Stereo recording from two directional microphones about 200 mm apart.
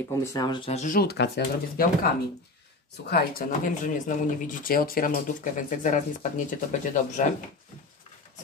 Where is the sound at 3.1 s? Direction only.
45° left (ahead or behind).